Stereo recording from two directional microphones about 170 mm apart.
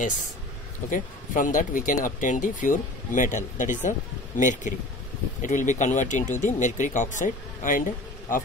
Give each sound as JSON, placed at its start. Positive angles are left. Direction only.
{"t": 0.8, "sound": "speech", "side_deg": 50}